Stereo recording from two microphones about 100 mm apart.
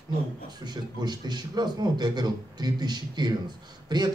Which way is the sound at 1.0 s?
45° right (ahead or behind).